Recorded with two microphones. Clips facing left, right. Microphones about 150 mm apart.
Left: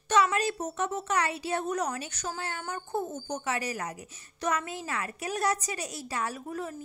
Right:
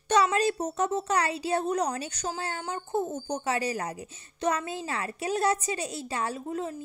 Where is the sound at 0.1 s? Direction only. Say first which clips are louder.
Right 2 dB; 30° right (ahead or behind).